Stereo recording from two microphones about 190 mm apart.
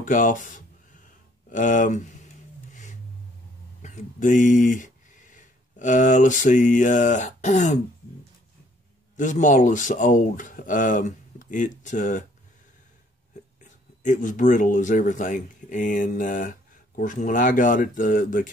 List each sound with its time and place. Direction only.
0.0 s speech: 40° left (ahead or behind)
2.7 s a sound: 40° left (ahead or behind)
3.8 s speech: 40° left (ahead or behind)
9.1 s speech: 40° left (ahead or behind)
14.0 s speech: 40° left (ahead or behind)